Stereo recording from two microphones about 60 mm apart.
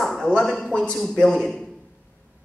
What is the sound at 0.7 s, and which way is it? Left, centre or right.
Speech, centre.